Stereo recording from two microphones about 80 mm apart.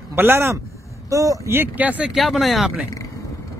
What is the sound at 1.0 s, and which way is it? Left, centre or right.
Speech, right.